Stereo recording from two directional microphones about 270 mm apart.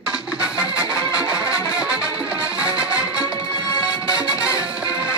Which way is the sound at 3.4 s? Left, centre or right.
Centre.